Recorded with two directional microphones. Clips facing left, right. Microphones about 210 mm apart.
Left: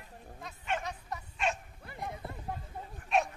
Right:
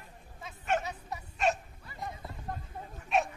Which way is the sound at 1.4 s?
40° right (ahead or behind).